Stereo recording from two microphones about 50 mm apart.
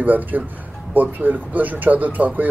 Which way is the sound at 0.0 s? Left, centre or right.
Right.